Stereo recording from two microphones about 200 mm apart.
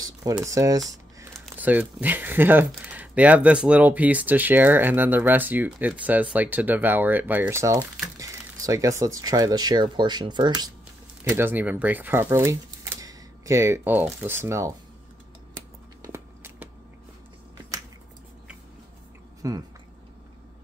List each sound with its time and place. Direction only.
0.0 s typing: 20° right (ahead or behind)
1.6 s speech: 10° right (ahead or behind)
11.2 s speech: 10° right (ahead or behind)
16.0 s walk: 15° right (ahead or behind)
19.4 s speech: 15° right (ahead or behind)